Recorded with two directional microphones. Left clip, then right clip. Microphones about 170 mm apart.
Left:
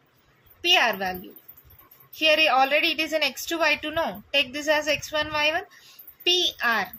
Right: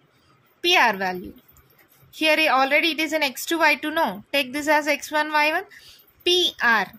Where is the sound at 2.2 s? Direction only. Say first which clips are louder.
Right 1 dB; 40° right (ahead or behind).